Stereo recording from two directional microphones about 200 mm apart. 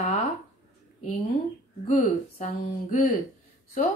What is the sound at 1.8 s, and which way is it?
Speech, 40° left (ahead or behind).